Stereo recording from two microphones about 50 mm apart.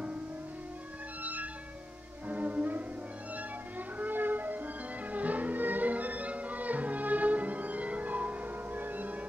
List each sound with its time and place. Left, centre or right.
1.2 s music: right
4.0 s music: right